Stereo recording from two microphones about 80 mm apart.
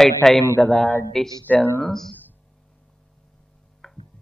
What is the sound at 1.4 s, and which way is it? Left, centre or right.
Speech, left.